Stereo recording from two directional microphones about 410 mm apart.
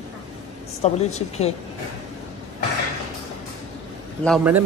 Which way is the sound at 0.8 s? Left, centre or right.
Centre.